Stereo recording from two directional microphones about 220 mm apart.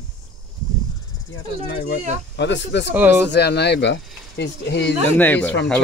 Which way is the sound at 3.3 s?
50° left (ahead or behind).